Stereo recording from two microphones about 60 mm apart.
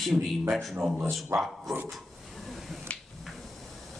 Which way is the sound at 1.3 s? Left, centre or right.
Right.